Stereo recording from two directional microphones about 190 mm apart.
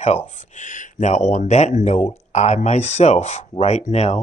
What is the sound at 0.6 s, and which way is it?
Speech, 40° left (ahead or behind).